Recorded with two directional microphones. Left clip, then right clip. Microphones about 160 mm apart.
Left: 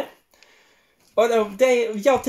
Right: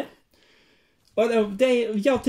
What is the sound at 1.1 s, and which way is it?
Speech, 15° right (ahead or behind).